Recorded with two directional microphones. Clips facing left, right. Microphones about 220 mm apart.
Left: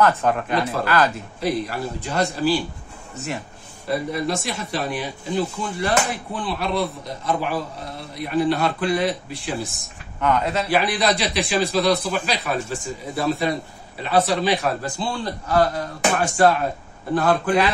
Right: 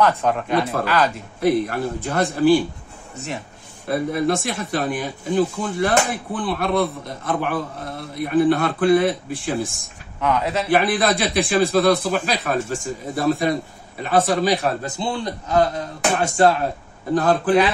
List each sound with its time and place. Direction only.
0.0 s speech: centre (ahead or behind)
1.4 s speech: 55° right (ahead or behind)
3.8 s speech: 55° right (ahead or behind)
10.2 s speech: centre (ahead or behind)
10.7 s speech: 50° right (ahead or behind)
14.8 s speech: 20° right (ahead or behind)
17.1 s a man's voice: 40° right (ahead or behind)